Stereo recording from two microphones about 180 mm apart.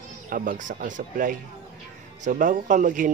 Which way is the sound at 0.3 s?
45° right (ahead or behind).